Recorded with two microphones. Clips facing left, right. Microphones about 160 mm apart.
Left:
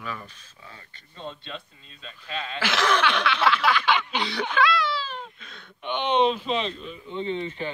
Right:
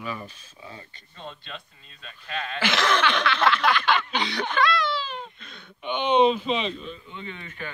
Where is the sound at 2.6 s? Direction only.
5° left (ahead or behind).